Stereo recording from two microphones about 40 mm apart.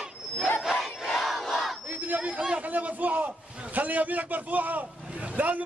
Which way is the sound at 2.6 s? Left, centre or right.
Right.